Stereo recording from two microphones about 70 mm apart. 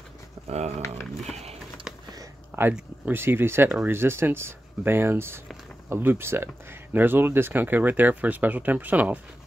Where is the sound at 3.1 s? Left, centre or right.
Right.